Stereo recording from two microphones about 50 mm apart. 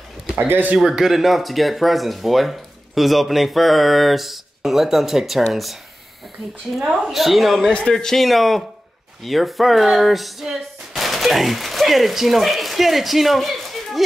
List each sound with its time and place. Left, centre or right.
0.4 s speech: right
0.8 s speech: centre
6.9 s speech: centre
7.7 s speech: centre